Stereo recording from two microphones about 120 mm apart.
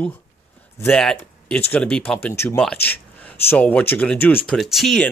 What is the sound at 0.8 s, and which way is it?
Speech, 5° left (ahead or behind).